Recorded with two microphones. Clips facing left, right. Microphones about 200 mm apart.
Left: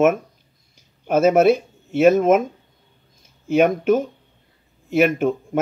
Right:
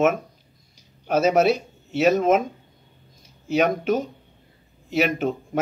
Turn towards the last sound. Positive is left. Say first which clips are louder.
# left 5 dB
turn(degrees=50)  # may be behind; listen again after turning